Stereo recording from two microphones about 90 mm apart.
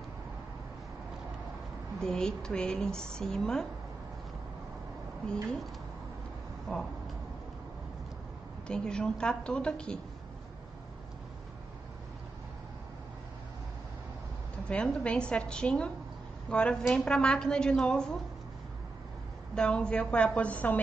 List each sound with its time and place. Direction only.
2.0 s a woman's voice: 10° left (ahead or behind)
6.7 s speech: 5° left (ahead or behind)
8.6 s a woman's voice: 10° left (ahead or behind)
14.7 s a woman's voice: 10° left (ahead or behind)
19.5 s a woman's voice: 10° left (ahead or behind)